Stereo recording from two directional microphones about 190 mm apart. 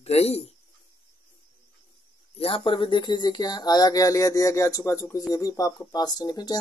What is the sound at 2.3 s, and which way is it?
Speech, 30° left (ahead or behind).